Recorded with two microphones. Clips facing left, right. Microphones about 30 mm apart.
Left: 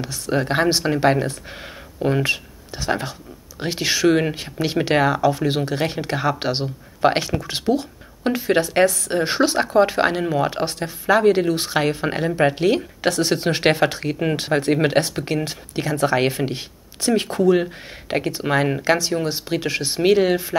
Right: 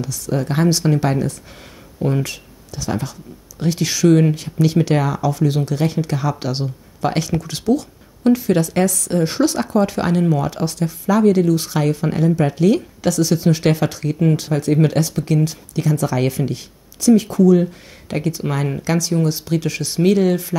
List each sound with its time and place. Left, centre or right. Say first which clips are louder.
0.0 s speech: even; left
18.1 s speech: left 2 dB; left